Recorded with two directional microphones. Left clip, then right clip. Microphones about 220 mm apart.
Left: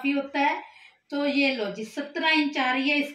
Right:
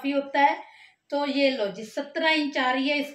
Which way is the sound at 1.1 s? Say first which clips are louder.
Right 1 dB; 35° right (ahead or behind).